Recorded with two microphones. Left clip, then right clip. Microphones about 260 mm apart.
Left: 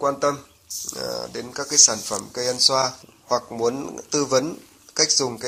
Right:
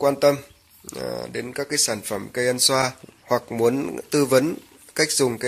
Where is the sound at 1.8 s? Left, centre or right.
Right.